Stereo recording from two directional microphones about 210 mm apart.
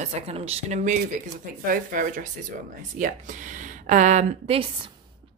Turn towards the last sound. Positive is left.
turn(degrees=-25)  # may be behind; listen again after turning